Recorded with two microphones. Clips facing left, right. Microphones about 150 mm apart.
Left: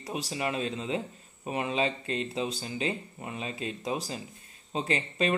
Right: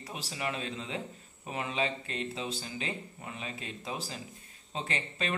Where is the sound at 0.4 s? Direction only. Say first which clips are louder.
Left 3 dB; 25° left (ahead or behind).